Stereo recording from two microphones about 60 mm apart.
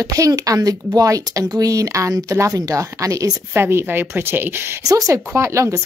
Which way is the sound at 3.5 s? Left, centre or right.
Right.